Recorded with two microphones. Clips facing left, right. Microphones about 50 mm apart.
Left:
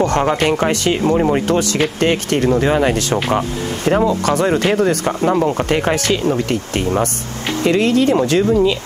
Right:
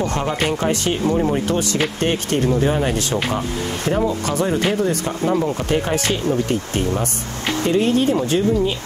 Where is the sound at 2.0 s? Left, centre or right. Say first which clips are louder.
Left 5 dB; left.